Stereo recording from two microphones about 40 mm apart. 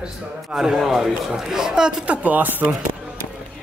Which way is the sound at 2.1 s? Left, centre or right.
Right.